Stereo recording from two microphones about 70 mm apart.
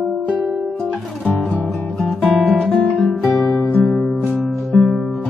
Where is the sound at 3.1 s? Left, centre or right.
Centre.